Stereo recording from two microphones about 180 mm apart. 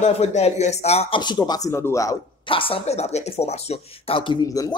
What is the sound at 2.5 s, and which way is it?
Speech, 30° left (ahead or behind).